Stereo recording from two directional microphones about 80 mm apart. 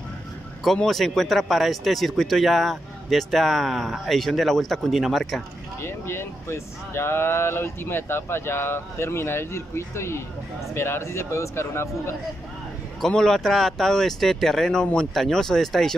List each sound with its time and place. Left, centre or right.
0.7 s speech: centre
5.8 s speech: left
13.0 s speech: centre